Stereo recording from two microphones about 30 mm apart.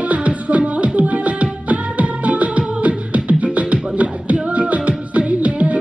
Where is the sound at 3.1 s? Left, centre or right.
Right.